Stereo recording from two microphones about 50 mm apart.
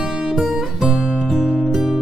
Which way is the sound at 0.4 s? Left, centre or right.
Centre.